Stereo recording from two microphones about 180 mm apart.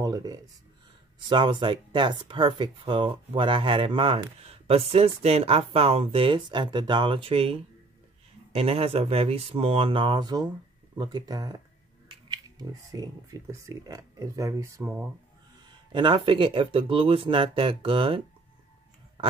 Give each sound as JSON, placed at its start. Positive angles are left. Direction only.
{"t": 0.0, "sound": "speech", "side_deg": -20}